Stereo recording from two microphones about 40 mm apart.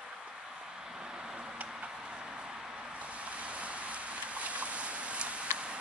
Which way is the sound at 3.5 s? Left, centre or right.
Right.